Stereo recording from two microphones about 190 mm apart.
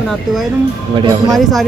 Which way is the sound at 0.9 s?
20° right (ahead or behind).